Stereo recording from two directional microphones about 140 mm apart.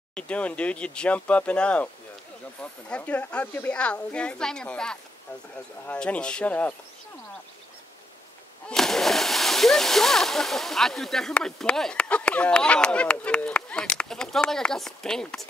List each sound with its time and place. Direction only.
0.1 s speech: 10° left (ahead or behind)
8.6 s speech: 5° left (ahead or behind)